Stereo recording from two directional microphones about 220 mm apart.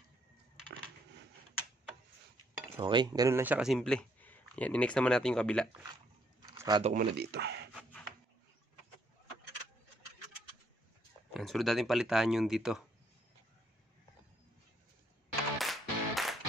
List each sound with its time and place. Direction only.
2.8 s speech: 20° right (ahead or behind); by 5.9 s 5° left (ahead or behind)
6.5 s a sound: 15° right (ahead or behind)
6.8 s speech: 35° right (ahead or behind)
7.2 s speech: 50° right (ahead or behind)
11.3 s speech: centre (ahead or behind)
15.6 s music: centre (ahead or behind)